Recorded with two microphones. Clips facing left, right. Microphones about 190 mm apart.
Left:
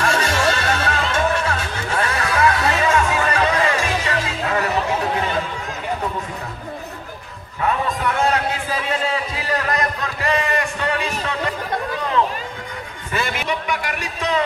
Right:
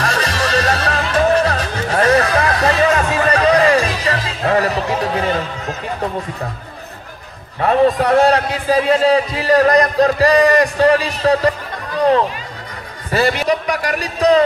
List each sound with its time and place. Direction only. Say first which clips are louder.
0.0 s music: even; 35° right (ahead or behind)
7.6 s a man's voice: right 8 dB; 35° right (ahead or behind)
13.1 s a man's voice: right 8 dB; 40° right (ahead or behind)